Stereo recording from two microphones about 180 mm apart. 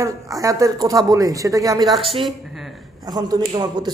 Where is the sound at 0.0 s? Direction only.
15° right (ahead or behind).